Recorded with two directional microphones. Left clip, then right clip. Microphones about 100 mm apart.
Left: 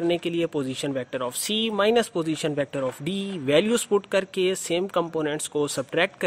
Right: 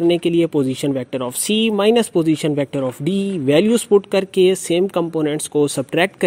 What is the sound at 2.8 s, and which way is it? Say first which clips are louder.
Speech: right 7 dB; 30° right (ahead or behind).